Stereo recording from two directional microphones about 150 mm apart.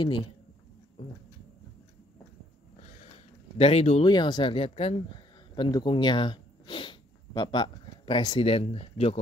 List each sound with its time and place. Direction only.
3.5 s speech: 40° left (ahead or behind)
4.0 s speech: 30° left (ahead or behind)